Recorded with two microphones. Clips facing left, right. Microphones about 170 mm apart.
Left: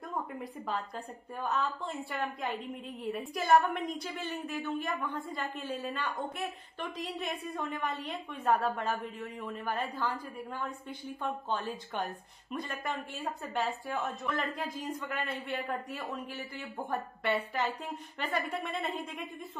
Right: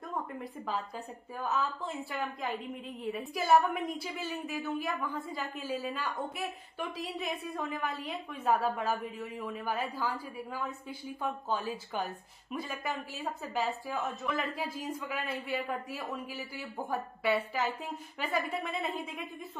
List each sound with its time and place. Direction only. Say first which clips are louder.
0.1 s a woman's voice: even; centre (ahead or behind)